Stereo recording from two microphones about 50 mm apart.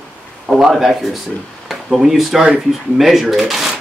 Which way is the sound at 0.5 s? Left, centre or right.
Centre.